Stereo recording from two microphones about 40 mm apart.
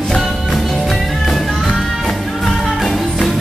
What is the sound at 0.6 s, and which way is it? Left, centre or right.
Music, centre.